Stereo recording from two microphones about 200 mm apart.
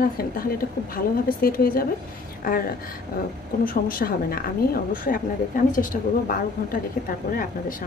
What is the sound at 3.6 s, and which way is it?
Speech, 45° left (ahead or behind).